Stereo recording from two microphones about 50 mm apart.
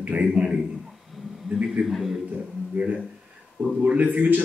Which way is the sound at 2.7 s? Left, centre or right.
Right.